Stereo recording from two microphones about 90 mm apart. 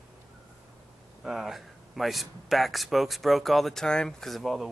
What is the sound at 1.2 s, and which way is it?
Speech, 5° right (ahead or behind).